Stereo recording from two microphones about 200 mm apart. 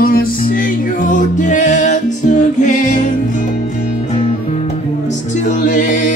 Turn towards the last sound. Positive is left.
turn(degrees=40)  # may be behind; listen again after turning